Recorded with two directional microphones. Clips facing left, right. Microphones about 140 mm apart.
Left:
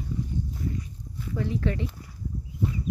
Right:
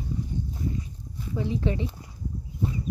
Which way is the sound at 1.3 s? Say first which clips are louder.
Right 1 dB; 20° right (ahead or behind).